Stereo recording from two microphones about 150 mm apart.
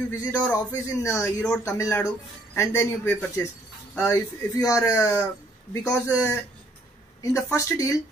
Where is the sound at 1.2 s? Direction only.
5° left (ahead or behind).